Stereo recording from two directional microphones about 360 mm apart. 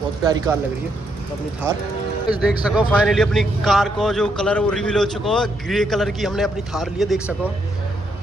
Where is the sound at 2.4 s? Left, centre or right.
Centre.